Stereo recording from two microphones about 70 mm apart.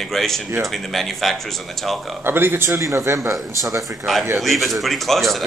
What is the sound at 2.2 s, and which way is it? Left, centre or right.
Speech, right.